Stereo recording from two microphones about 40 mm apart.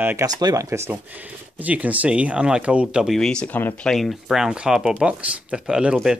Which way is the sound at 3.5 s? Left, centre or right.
Left.